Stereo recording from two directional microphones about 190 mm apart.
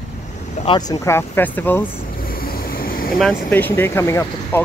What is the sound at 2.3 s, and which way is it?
Vehicle, 50° left (ahead or behind).